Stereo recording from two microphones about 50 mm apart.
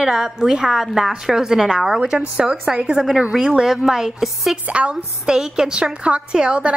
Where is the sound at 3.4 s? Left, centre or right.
Centre.